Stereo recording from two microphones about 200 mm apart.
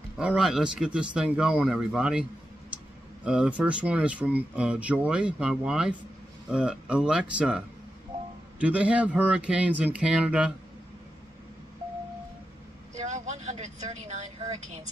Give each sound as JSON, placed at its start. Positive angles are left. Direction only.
{"t": 0.2, "sound": "speech", "side_deg": -5}
{"t": 3.3, "sound": "speech", "side_deg": -5}
{"t": 12.9, "sound": "speech", "side_deg": -35}